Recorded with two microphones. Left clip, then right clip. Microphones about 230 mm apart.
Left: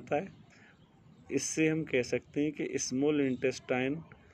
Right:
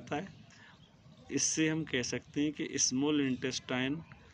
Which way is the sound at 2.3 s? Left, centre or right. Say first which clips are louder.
Right 2 dB; right.